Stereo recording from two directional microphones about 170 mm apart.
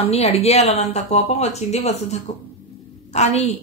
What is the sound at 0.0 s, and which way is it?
A woman's voice, 35° left (ahead or behind).